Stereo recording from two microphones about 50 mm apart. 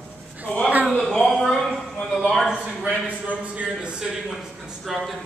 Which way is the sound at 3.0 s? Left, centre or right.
Right.